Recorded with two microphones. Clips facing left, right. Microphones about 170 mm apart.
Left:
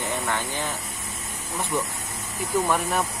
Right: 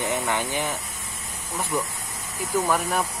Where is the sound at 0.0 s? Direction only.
15° right (ahead or behind).